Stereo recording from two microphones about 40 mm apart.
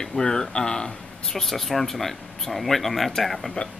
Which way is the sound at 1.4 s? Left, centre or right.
Centre.